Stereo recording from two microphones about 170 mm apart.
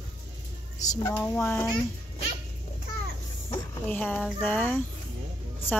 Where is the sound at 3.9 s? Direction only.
10° left (ahead or behind).